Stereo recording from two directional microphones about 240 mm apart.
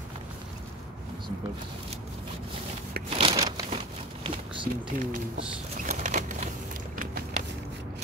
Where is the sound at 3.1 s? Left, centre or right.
Right.